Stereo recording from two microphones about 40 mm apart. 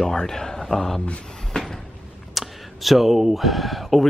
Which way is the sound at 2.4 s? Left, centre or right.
Centre.